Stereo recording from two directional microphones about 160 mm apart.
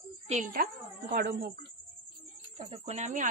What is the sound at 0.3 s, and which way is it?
Speech, 55° right (ahead or behind).